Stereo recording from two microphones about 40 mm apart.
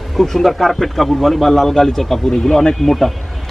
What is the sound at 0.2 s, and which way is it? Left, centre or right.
Speech, centre.